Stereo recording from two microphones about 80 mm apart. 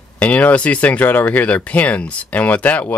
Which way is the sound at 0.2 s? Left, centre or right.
Centre.